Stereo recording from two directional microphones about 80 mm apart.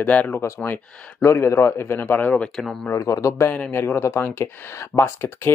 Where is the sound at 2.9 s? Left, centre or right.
Left.